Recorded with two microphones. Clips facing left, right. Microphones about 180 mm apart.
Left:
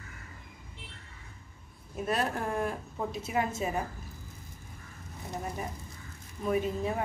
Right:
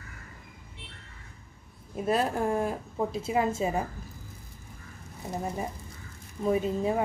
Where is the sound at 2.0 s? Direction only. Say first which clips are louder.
Right 5 dB; 25° right (ahead or behind).